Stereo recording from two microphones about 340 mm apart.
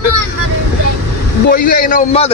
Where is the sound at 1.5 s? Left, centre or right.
Left.